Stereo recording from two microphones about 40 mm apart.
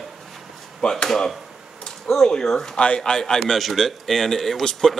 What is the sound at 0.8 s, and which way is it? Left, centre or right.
Speech, centre.